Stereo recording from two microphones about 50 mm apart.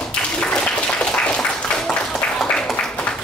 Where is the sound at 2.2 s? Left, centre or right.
Left.